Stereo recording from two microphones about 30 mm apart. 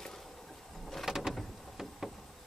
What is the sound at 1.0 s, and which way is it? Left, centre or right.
Vehicle, centre.